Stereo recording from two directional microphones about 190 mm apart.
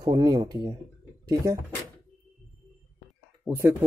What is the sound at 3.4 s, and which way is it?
Speech, 15° right (ahead or behind).